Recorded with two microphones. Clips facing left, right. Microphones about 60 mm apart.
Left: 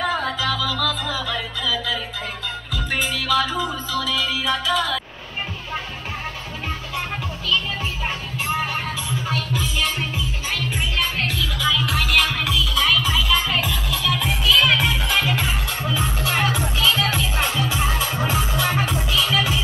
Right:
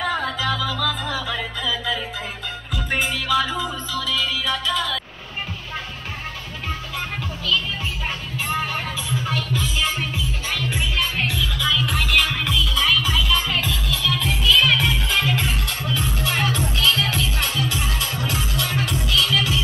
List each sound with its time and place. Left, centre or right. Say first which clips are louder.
0.0 s music: left 1 dB; centre
8.5 s music: left 1 dB; centre
15.8 s music: left 2 dB; centre
17.4 s music: left 2 dB; left